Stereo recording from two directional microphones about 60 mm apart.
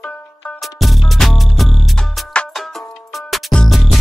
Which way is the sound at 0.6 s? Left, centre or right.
Centre.